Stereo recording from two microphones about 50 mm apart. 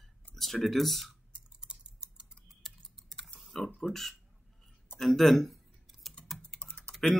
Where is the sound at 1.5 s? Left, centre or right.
Centre.